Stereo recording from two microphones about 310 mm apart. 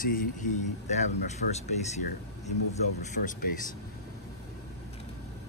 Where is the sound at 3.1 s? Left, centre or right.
Left.